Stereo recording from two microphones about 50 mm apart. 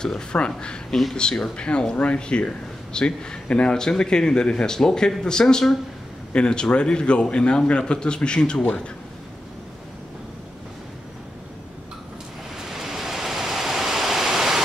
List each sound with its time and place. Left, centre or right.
0.0 s a man's voice: centre
12.7 s vehicle: centre